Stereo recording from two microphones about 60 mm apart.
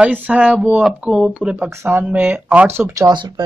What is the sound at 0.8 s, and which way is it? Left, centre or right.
Speech, centre.